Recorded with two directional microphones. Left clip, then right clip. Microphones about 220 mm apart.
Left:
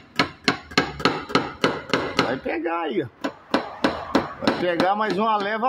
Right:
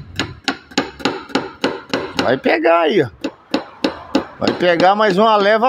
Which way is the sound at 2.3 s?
40° right (ahead or behind).